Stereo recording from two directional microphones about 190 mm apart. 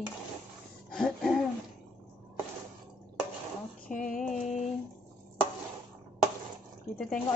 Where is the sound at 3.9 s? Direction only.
45° left (ahead or behind).